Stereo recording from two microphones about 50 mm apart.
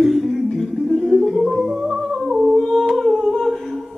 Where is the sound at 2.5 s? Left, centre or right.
Centre.